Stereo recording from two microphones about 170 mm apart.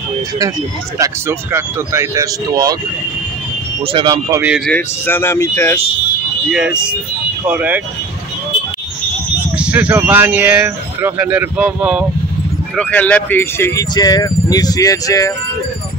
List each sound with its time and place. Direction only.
0.9 s speech: 15° right (ahead or behind)
3.8 s speech: 30° right (ahead or behind)
4.4 s speech: 5° right (ahead or behind)
4.6 s speech: 10° left (ahead or behind)
6.5 s speech: 5° right (ahead or behind)
9.6 s speech: 5° right (ahead or behind)
12.7 s speech: 10° left (ahead or behind)